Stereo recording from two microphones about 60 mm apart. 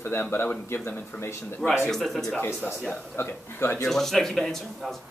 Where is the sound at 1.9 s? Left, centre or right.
Centre.